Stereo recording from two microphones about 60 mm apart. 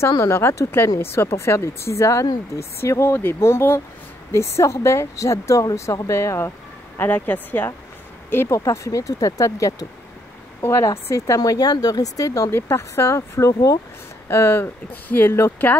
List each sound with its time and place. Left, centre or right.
0.3 s speech: left
7.0 s a woman's voice: left
8.5 s speech: left
10.6 s speech: left
10.9 s speech: left
12.4 s speech: left
14.2 s speech: left
15.0 s a woman's voice: left